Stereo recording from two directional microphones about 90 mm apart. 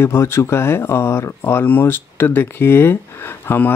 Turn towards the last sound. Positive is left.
turn(degrees=25)  # may be behind; listen again after turning